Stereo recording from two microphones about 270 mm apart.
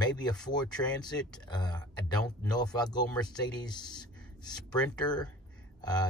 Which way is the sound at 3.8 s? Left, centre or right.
Centre.